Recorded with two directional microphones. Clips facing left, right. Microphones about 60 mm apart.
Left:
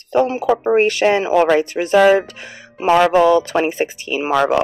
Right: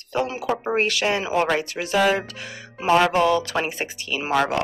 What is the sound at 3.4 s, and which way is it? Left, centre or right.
Speech, left.